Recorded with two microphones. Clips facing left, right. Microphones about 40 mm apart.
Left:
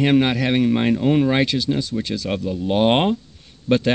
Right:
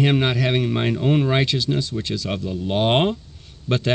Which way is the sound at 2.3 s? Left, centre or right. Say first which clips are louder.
Left 3 dB; centre.